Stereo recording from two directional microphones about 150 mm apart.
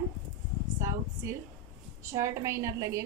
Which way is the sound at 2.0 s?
20° right (ahead or behind).